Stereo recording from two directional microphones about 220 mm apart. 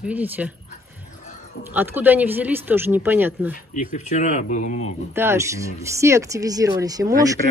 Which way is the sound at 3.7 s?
35° left (ahead or behind).